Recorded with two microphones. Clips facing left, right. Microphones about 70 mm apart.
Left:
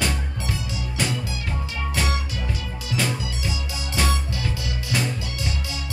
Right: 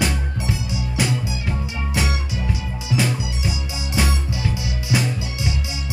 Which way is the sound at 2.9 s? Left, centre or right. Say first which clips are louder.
Right 4 dB; centre.